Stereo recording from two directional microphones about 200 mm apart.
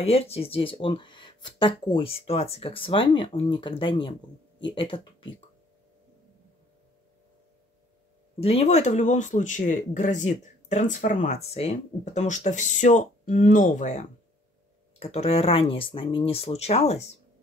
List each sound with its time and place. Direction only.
0.0 s speech: 30° left (ahead or behind)
8.4 s speech: 30° left (ahead or behind)